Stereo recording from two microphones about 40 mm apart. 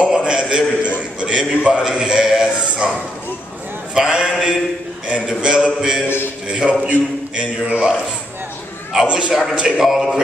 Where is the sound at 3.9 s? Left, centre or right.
Right.